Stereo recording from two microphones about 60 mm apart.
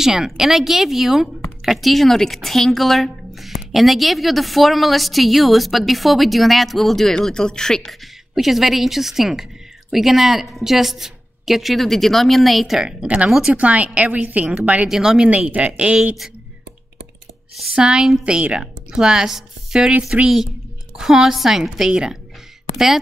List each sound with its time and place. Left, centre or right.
0.0 s speech: centre
8.4 s speech: centre
13.0 s a woman's voice: right
14.9 s speech: centre
15.2 s a woman's voice: right
17.7 s speech: centre
20.1 s a woman's voice: right
21.0 s speech: centre